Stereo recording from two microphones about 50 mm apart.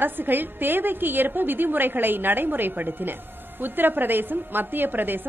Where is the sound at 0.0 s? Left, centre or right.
Right.